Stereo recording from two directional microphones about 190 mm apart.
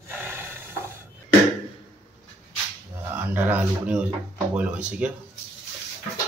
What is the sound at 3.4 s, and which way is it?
Speech, 5° right (ahead or behind).